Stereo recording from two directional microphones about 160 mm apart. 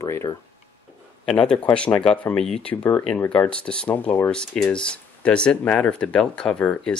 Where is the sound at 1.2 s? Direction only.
5° left (ahead or behind).